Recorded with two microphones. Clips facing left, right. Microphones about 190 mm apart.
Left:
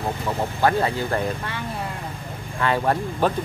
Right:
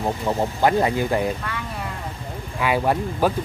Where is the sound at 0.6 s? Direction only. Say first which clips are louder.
Right 1 dB; 15° right (ahead or behind).